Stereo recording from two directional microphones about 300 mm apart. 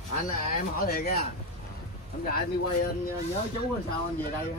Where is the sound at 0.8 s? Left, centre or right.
Left.